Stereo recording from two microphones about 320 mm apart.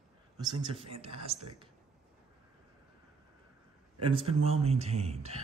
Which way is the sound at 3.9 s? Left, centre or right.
Centre.